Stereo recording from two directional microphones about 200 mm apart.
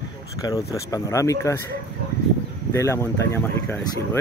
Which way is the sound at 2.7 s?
15° left (ahead or behind).